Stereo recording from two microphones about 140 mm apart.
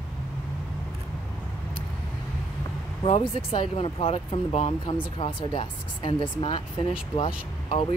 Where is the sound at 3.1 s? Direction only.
45° left (ahead or behind).